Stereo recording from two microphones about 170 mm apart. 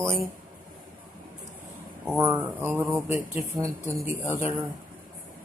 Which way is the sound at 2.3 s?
10° right (ahead or behind).